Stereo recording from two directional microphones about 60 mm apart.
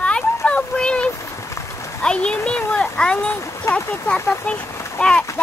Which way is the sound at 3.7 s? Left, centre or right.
Left.